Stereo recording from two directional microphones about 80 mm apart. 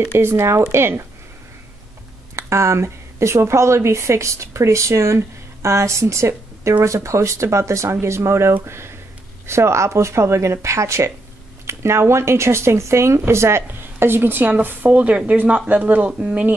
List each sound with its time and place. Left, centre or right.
0.0 s speech: right
2.3 s a woman's voice: right; by 16.5 s centre